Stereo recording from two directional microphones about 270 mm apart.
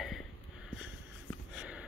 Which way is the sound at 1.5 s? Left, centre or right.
Centre.